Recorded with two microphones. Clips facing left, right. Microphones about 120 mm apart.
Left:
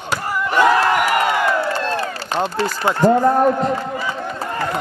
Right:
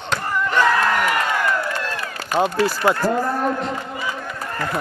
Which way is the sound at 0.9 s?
10° left (ahead or behind).